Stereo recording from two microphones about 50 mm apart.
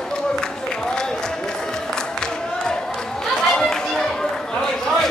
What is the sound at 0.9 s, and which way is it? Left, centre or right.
Music, centre.